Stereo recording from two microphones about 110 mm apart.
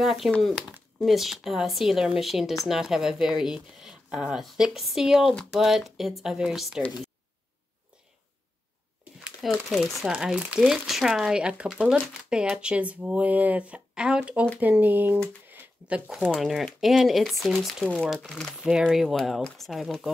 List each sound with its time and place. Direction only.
0.0 s speech: centre (ahead or behind)
0.7 s speech: 10° right (ahead or behind)
9.5 s speech: centre (ahead or behind); by 15.1 s 15° right (ahead or behind)
15.4 s a sound: 15° right (ahead or behind)
16.1 s speech: 5° right (ahead or behind)